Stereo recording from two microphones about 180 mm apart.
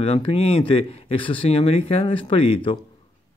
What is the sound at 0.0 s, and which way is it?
Speech, 30° left (ahead or behind).